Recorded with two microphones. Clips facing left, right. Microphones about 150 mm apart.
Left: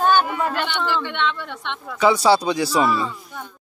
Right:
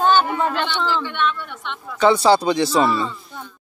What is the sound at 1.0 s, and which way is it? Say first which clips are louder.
Speech: right 1 dB; 75° left (ahead or behind).